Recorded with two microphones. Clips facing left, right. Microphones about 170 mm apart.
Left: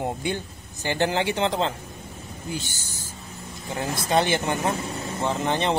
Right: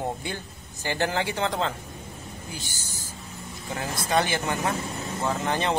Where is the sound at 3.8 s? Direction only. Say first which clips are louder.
Left 3 dB; 25° left (ahead or behind).